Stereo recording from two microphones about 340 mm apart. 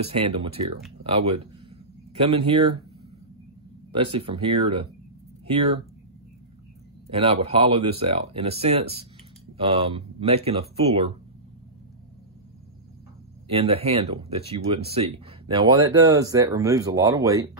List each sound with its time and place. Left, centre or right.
0.0 s speech: centre
3.9 s speech: centre
7.1 s speech: centre
13.5 s speech: centre